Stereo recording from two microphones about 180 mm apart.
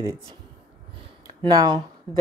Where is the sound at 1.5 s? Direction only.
20° right (ahead or behind).